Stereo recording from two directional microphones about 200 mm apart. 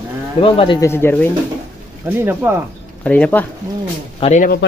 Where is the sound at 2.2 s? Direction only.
10° right (ahead or behind).